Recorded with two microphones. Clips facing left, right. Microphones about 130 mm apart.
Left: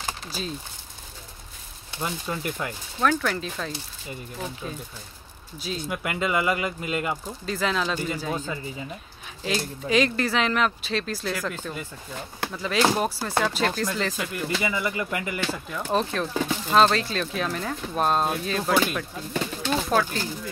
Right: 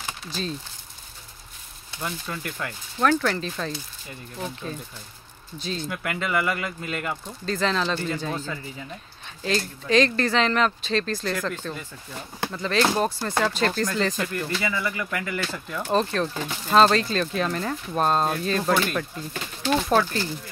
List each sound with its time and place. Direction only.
2.0 s speech: 20° left (ahead or behind)
3.0 s speech: centre (ahead or behind)
14.6 s speech: 20° left (ahead or behind)
15.5 s speech: 5° left (ahead or behind)